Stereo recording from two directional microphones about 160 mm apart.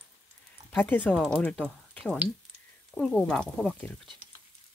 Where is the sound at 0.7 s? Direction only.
10° left (ahead or behind).